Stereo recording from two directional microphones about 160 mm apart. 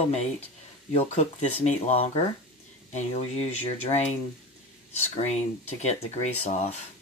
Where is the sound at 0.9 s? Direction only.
45° left (ahead or behind).